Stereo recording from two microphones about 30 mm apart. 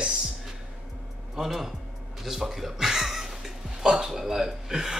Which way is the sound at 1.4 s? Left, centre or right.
Centre.